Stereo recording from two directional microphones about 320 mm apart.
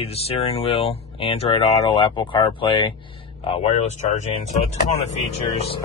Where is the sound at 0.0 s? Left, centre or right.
Centre.